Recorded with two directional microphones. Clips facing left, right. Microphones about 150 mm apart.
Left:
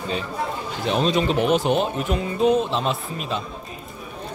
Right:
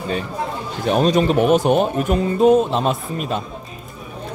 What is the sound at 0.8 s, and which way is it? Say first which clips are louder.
Speech: right 5 dB; 50° right (ahead or behind).